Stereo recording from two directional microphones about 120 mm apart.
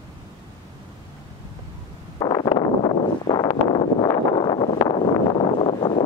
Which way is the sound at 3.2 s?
45° left (ahead or behind).